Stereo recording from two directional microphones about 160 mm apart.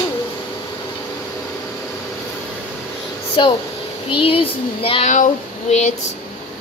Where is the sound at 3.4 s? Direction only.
30° left (ahead or behind).